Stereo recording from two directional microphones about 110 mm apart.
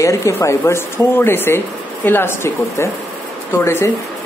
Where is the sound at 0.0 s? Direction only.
30° left (ahead or behind).